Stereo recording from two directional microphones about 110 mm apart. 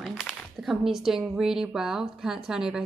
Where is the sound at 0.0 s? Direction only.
5° right (ahead or behind).